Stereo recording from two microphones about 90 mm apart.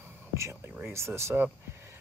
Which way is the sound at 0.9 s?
30° right (ahead or behind).